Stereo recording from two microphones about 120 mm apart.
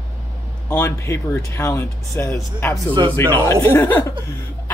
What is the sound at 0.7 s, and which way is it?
Speech, 20° left (ahead or behind).